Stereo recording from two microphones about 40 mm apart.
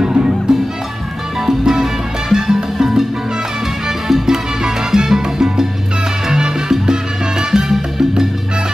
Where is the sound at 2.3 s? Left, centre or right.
Centre.